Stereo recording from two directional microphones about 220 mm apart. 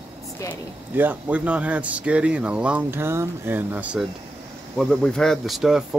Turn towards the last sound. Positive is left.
turn(degrees=0)  # may be behind; listen again after turning